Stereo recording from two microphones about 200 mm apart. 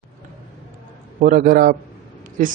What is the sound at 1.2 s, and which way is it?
Speech, 45° right (ahead or behind).